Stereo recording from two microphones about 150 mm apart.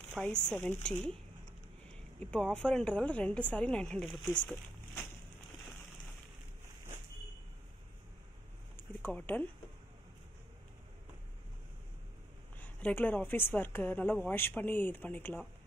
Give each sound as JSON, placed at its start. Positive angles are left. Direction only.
{"t": 0.1, "sound": "a woman's voice", "side_deg": 5}
{"t": 2.1, "sound": "a woman's voice", "side_deg": 5}
{"t": 9.0, "sound": "a woman's voice", "side_deg": 10}
{"t": 12.5, "sound": "a woman's voice", "side_deg": 10}